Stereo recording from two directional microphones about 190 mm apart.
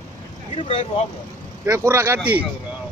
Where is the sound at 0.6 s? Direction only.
30° left (ahead or behind).